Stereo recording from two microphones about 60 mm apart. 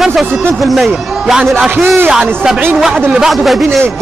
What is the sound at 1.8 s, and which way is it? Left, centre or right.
Speech, right.